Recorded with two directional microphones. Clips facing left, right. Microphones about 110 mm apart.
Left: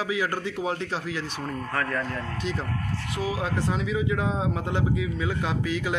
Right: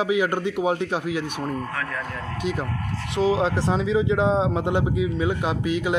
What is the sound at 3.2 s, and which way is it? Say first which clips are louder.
A man's voice: right 8 dB; 25° right (ahead or behind).